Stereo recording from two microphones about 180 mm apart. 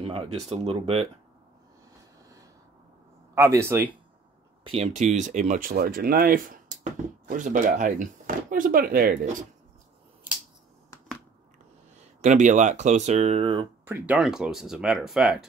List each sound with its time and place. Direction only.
0.0 s speech: 30° right (ahead or behind)
3.3 s speech: 15° right (ahead or behind)
4.6 s speech: 35° right (ahead or behind); by 9.4 s 50° right (ahead or behind)
12.0 s speech: 40° right (ahead or behind)
13.8 s speech: 10° right (ahead or behind)